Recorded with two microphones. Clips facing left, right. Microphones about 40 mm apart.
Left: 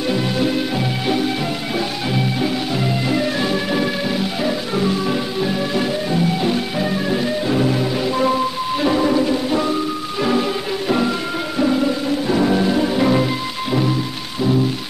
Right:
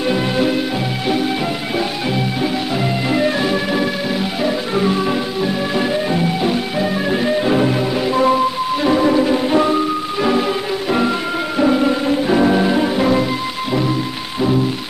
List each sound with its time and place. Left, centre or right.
0.1 s music: centre
3.1 s music: centre
6.4 s music: centre
7.1 s music: right
9.3 s music: right
10.9 s music: centre
12.9 s music: centre